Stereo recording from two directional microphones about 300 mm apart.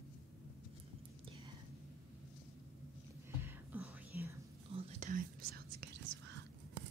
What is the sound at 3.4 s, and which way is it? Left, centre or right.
Whispering, centre.